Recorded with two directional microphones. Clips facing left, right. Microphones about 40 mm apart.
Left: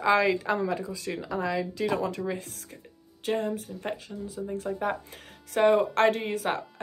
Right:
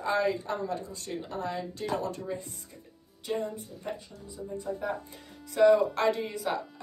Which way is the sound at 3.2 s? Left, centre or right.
Left.